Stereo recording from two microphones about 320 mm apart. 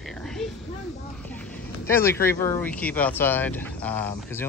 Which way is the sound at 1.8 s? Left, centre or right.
Centre.